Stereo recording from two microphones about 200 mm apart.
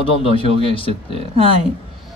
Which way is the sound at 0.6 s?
25° left (ahead or behind).